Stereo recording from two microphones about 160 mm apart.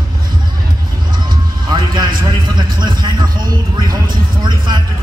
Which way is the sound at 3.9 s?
30° right (ahead or behind).